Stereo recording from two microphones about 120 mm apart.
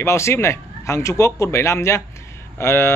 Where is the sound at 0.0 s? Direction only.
25° left (ahead or behind).